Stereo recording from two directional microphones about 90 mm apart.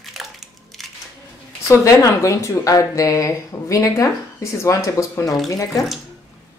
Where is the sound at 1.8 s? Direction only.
35° left (ahead or behind).